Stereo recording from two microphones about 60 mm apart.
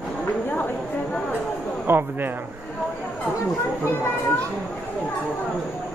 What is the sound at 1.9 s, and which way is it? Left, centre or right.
Speech, right.